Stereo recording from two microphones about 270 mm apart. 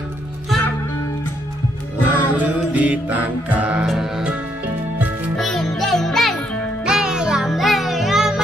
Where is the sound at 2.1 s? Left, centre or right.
Centre.